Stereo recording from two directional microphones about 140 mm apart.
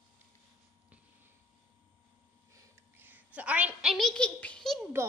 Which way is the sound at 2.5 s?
15° right (ahead or behind).